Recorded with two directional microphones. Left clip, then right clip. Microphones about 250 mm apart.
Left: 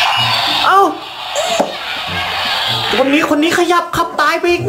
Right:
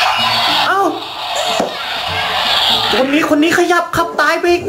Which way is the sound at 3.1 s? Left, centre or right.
Centre.